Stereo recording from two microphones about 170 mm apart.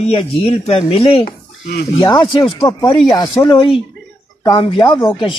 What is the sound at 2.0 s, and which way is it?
Speech, 25° left (ahead or behind).